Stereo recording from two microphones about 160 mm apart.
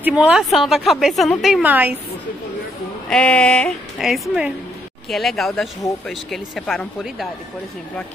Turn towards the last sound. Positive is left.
turn(degrees=5)  # may be behind; listen again after turning